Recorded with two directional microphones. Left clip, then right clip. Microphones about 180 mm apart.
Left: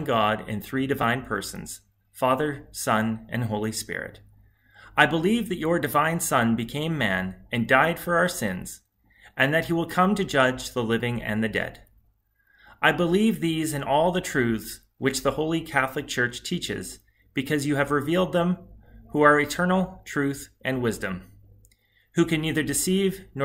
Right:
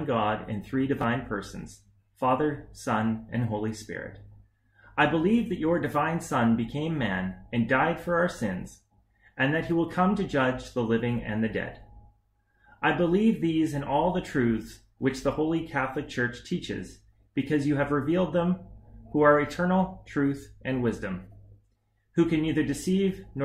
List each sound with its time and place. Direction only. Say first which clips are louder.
0.0 s speech: left 4 dB; 20° left (ahead or behind)
12.8 s speech: left 3 dB; 20° left (ahead or behind)
22.1 s speech: left 1 dB; 20° left (ahead or behind)